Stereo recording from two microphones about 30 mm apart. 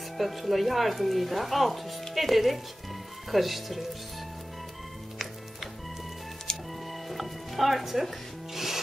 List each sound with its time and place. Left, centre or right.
0.2 s speech: centre
6.5 s music: centre
6.9 s music: centre